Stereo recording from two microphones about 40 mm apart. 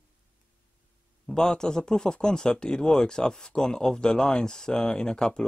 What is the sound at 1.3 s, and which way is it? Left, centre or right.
Speech, centre.